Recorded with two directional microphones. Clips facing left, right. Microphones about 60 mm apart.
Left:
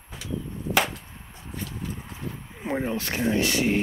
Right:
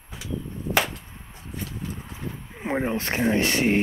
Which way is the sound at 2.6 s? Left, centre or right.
Right.